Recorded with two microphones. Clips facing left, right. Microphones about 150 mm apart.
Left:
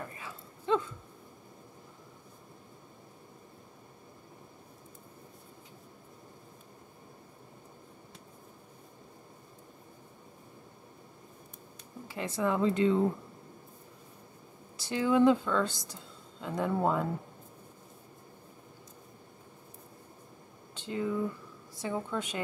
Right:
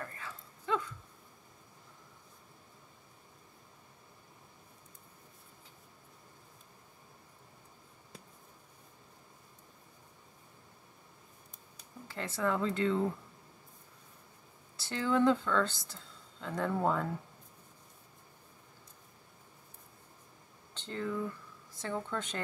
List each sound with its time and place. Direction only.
0.0 s a sound: 15° left (ahead or behind)
12.1 s speech: 15° left (ahead or behind)
14.8 s speech: 15° left (ahead or behind)
20.7 s speech: 10° left (ahead or behind)